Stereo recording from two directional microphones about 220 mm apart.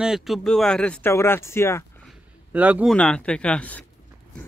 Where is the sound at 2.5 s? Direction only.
5° right (ahead or behind).